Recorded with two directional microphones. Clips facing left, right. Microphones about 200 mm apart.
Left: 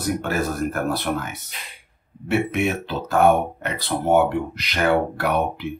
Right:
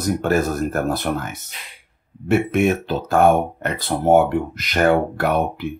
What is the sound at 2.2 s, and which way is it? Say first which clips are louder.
Speech: right 4 dB; 50° right (ahead or behind).